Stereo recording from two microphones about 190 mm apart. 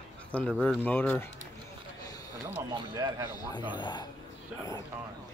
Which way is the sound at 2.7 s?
20° right (ahead or behind).